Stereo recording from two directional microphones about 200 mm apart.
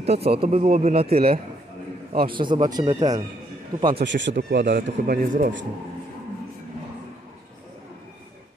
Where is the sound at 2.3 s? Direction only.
25° right (ahead or behind).